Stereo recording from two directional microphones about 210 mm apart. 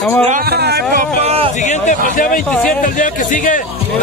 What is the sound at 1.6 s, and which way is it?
Speech, 35° left (ahead or behind).